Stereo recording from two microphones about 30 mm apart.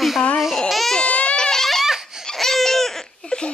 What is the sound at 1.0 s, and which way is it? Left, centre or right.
Baby cry, left.